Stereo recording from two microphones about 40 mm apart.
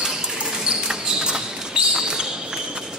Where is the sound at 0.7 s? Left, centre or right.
Centre.